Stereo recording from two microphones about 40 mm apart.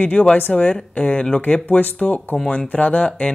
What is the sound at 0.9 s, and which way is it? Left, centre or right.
Speech, left.